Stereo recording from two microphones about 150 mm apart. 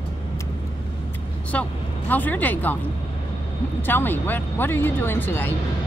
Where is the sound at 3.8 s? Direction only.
15° left (ahead or behind).